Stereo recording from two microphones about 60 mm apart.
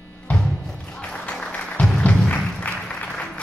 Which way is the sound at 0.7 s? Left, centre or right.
Centre.